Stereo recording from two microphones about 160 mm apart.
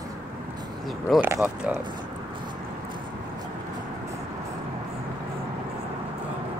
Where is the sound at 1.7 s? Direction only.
10° right (ahead or behind).